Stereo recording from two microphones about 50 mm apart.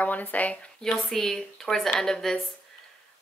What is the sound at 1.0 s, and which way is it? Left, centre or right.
A woman's voice, centre.